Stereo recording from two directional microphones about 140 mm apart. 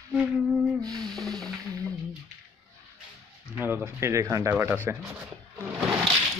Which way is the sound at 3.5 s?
15° right (ahead or behind).